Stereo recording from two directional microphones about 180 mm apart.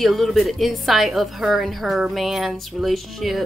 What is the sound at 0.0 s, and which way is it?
A woman's voice, centre (ahead or behind).